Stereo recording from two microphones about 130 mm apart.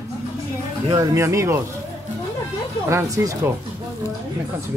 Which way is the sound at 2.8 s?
25° right (ahead or behind).